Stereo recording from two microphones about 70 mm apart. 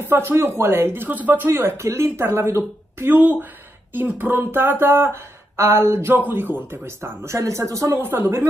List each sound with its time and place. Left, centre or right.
0.0 s speech: right
1.5 s speech: right
7.9 s speech: right